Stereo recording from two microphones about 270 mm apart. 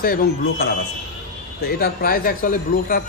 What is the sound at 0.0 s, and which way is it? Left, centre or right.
Speech, left.